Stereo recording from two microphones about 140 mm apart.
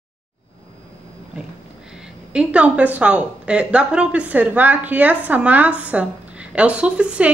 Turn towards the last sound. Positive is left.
turn(degrees=-10)  # may be behind; listen again after turning